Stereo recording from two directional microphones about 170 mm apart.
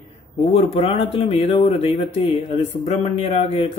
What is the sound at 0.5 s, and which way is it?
Speech, 35° left (ahead or behind).